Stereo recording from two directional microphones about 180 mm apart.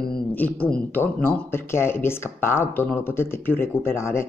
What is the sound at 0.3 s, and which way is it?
Speech, 10° left (ahead or behind).